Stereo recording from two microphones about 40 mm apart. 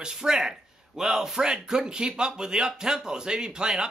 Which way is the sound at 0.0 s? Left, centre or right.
Centre.